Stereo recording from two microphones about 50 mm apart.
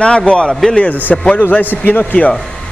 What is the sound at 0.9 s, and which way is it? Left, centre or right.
A man's voice, left.